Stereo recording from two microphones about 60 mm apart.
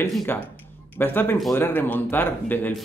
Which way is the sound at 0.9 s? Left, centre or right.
Left.